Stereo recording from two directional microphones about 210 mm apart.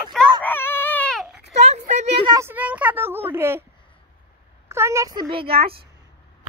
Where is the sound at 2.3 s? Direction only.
10° right (ahead or behind).